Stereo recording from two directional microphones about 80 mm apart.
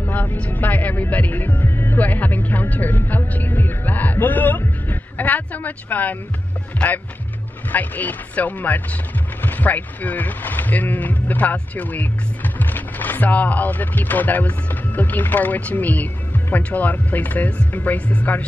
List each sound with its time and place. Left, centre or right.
0.0 s speech: left